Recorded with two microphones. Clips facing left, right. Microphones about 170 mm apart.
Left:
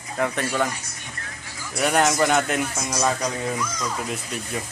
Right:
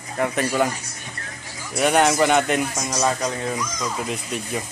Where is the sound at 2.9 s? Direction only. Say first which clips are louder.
Right 1 dB; 10° right (ahead or behind).